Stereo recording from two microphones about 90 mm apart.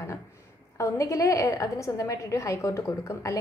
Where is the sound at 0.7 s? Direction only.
35° left (ahead or behind).